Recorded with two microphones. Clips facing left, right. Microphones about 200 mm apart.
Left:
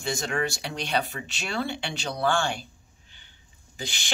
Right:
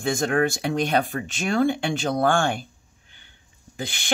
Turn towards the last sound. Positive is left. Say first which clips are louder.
# right 5 dB
turn(degrees=-55)  # may be behind; listen again after turning